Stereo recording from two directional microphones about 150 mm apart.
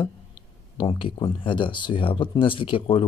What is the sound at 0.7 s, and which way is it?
Speech, 35° left (ahead or behind).